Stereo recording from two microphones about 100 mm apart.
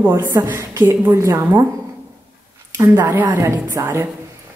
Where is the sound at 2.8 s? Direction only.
35° right (ahead or behind).